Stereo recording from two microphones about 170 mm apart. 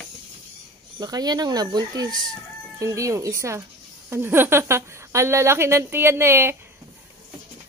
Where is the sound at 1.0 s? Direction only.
20° right (ahead or behind).